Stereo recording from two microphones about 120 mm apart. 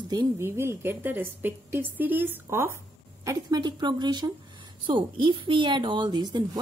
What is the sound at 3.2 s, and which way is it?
A woman's voice, 35° right (ahead or behind).